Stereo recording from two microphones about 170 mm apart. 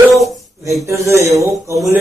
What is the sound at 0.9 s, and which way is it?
Speech, 15° right (ahead or behind).